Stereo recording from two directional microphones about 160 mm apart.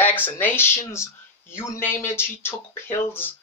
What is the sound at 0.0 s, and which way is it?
Speech, 10° left (ahead or behind).